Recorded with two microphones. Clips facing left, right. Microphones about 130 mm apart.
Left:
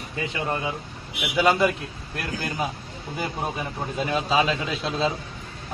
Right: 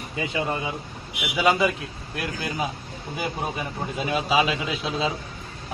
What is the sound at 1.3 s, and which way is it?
Speech, centre (ahead or behind).